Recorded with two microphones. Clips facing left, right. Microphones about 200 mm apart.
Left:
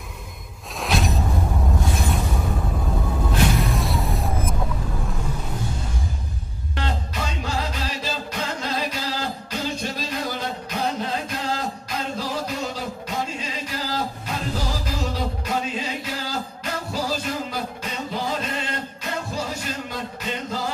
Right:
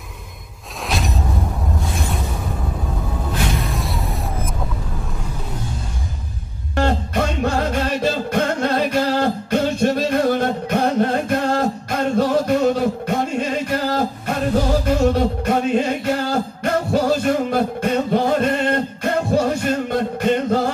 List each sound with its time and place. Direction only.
0.8 s music: centre (ahead or behind)
3.6 s a sound: centre (ahead or behind)
6.7 s music: 55° right (ahead or behind)